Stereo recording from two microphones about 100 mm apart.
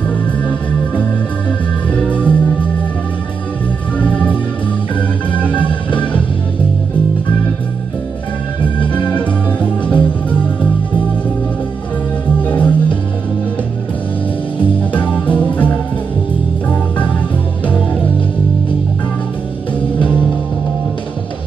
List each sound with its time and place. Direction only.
2.0 s music: 15° left (ahead or behind)
4.0 s music: 15° left (ahead or behind)
5.4 s music: 15° left (ahead or behind)
8.9 s music: 15° left (ahead or behind)
12.4 s music: 15° left (ahead or behind)
15.0 s music: 15° left (ahead or behind)